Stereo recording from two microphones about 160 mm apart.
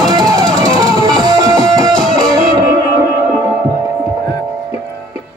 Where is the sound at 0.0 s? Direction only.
25° right (ahead or behind).